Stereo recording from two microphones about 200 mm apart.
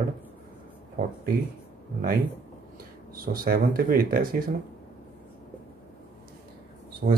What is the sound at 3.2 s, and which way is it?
Speech, 45° right (ahead or behind).